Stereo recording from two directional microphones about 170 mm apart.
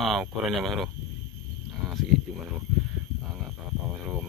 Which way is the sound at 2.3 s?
Centre (ahead or behind).